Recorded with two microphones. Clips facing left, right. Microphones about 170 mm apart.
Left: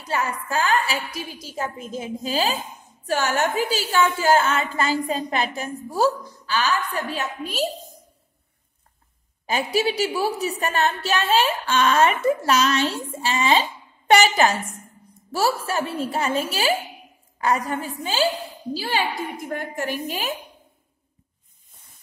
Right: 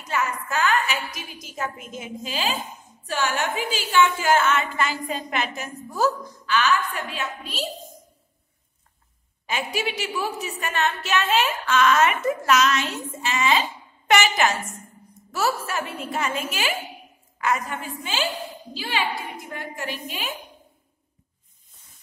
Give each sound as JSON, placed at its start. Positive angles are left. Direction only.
{"t": 0.0, "sound": "a woman's voice", "side_deg": 35}
{"t": 9.5, "sound": "a woman's voice", "side_deg": 35}